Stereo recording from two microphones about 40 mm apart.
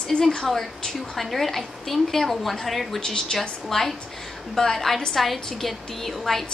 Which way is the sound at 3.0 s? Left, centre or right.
Centre.